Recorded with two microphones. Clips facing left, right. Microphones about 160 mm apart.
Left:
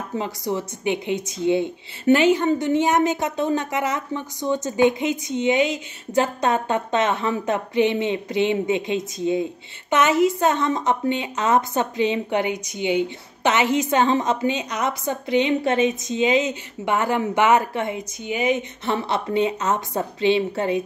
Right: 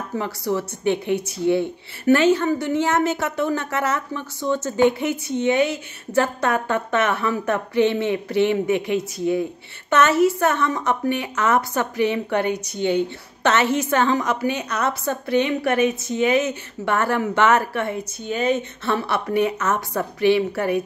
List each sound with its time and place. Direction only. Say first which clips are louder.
0.2 s a woman's voice: right 2 dB; 20° left (ahead or behind)